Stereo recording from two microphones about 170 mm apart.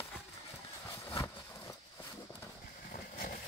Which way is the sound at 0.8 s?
20° left (ahead or behind).